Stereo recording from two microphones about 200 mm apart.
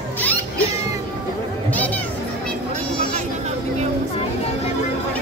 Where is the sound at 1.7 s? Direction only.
10° left (ahead or behind).